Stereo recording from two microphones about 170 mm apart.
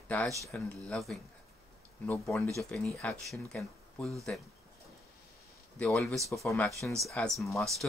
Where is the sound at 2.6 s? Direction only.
5° left (ahead or behind).